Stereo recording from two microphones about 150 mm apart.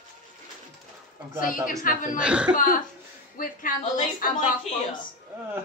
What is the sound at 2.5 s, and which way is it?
A woman's voice, 70° left (ahead or behind).